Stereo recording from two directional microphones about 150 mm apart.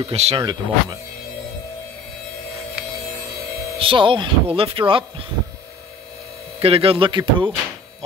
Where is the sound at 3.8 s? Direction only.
35° right (ahead or behind).